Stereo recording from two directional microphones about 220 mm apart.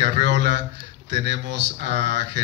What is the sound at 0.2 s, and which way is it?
Speech, 50° right (ahead or behind).